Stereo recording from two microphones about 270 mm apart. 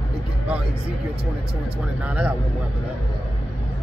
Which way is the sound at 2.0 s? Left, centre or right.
Centre.